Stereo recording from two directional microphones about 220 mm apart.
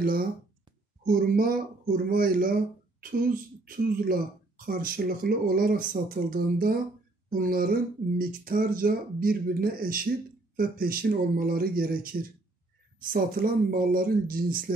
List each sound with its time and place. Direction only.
0.0 s speech: 40° right (ahead or behind)